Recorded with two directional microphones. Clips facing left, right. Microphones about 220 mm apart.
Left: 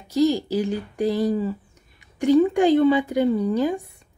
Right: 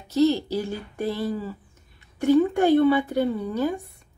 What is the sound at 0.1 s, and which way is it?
Speech, 15° left (ahead or behind).